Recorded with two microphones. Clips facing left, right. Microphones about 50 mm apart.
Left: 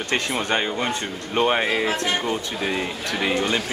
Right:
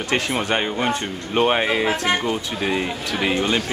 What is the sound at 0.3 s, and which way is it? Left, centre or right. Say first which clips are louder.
Speech: right 1 dB; centre.